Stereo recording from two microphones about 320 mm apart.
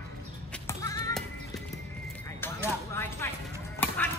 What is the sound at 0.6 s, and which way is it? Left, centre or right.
Music, centre.